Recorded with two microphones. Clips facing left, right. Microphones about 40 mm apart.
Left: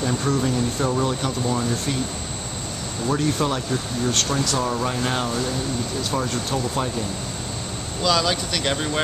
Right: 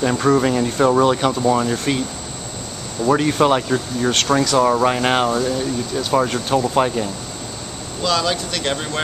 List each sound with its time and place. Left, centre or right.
0.2 s speech: right
1.0 s speech: right
1.4 s speech: right
3.1 s speech: right
8.0 s speech: centre